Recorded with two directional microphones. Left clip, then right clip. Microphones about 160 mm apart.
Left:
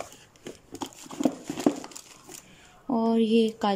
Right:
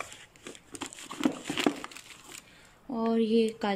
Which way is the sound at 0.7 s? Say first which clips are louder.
Left 3 dB; 15° left (ahead or behind).